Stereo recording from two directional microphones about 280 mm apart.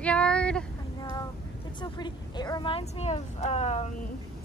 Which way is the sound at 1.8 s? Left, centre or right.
Centre.